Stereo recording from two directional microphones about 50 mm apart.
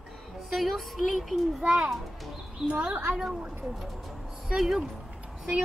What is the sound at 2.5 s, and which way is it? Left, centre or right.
Speech, right.